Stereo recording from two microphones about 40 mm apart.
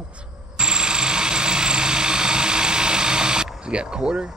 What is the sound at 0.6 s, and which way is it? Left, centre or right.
Vehicle, right.